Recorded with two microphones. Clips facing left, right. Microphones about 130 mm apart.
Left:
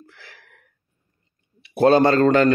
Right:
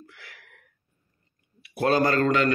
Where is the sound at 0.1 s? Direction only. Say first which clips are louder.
Left 2 dB; 30° left (ahead or behind).